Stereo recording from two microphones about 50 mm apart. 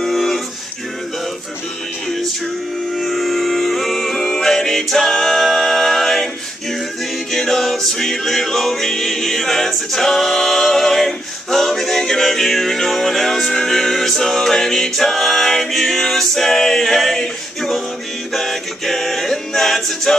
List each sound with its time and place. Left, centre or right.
0.0 s music: centre
3.0 s music: centre
7.3 s music: centre
18.3 s a capella: centre